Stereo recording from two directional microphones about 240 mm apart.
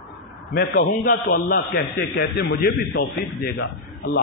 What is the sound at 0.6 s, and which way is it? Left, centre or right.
A man's voice, left.